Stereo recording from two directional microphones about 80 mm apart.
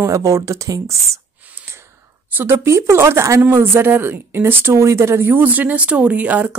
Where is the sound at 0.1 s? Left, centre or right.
Right.